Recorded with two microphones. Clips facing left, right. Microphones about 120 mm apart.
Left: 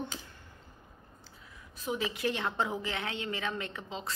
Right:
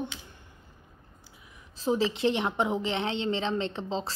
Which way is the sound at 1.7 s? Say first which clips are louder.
Right 8 dB; 30° right (ahead or behind).